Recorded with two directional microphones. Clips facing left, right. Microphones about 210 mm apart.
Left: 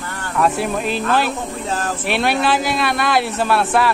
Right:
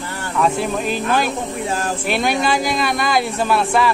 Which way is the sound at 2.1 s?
5° left (ahead or behind).